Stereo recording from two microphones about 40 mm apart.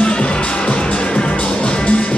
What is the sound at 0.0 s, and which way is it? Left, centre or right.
Music, left.